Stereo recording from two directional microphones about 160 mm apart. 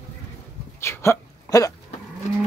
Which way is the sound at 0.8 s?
15° left (ahead or behind).